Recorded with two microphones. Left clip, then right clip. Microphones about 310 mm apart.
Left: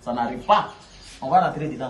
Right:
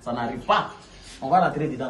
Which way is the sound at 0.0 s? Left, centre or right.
Centre.